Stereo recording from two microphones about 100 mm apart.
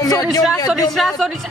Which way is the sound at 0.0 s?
35° left (ahead or behind).